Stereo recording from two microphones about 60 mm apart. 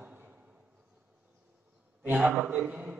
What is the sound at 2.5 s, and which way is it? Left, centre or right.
Speech, right.